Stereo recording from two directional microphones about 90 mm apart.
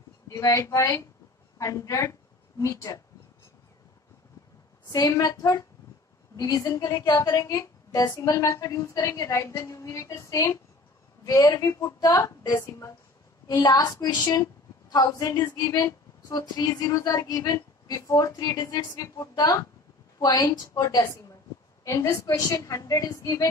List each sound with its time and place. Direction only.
0.3 s a woman's voice: 35° left (ahead or behind)
4.8 s a woman's voice: 40° left (ahead or behind)